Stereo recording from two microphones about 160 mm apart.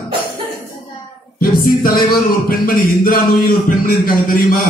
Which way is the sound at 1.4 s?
65° left (ahead or behind).